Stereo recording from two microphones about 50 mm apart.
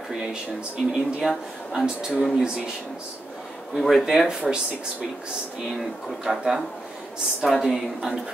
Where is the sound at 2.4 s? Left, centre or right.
Centre.